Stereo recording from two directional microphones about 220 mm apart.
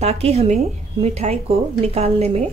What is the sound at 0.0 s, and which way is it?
Speech, 30° right (ahead or behind).